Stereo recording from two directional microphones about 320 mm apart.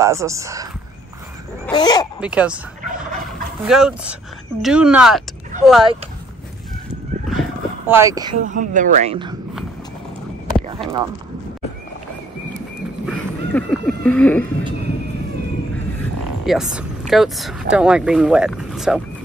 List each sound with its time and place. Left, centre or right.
0.0 s speech: centre
1.7 s speech: centre
2.1 s speech: centre
3.6 s speech: centre
7.2 s vehicle: centre
8.5 s speech: right
10.8 s speech: centre
13.0 s duck: centre
16.4 s speech: centre